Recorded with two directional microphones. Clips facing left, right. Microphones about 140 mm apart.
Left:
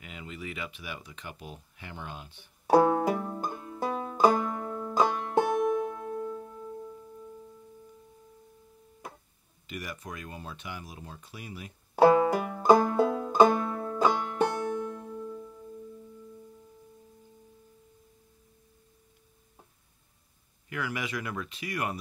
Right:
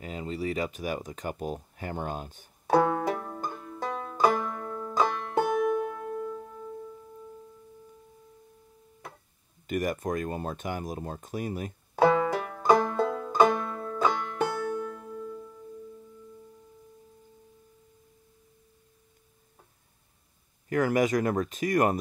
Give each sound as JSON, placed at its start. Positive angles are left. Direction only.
{"t": 0.0, "sound": "speech", "side_deg": -35}
{"t": 2.6, "sound": "banjo", "side_deg": 10}
{"t": 5.7, "sound": "music", "side_deg": 0}
{"t": 9.7, "sound": "speech", "side_deg": -50}
{"t": 11.9, "sound": "banjo", "side_deg": 10}
{"t": 15.1, "sound": "music", "side_deg": 15}
{"t": 20.7, "sound": "speech", "side_deg": -45}